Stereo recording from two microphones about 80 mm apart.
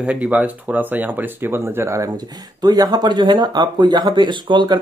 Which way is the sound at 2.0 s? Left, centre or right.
Right.